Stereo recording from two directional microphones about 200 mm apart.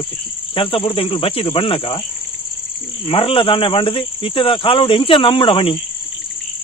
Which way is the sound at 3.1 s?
25° left (ahead or behind).